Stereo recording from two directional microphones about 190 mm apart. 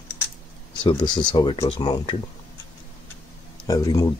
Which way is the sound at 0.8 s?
25° left (ahead or behind).